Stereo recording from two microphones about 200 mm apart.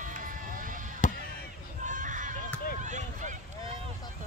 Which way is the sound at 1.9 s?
40° right (ahead or behind).